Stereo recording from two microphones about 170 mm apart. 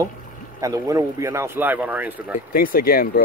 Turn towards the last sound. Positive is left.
turn(degrees=60)  # may be behind; listen again after turning